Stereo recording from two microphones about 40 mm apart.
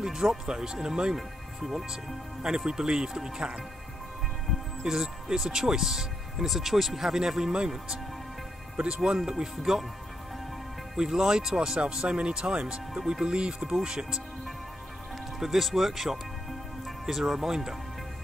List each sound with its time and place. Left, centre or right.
0.0 s speech: centre
1.1 s speech: centre
4.8 s speech: centre
9.7 s speech: centre
11.0 s speech: centre
15.3 s speech: centre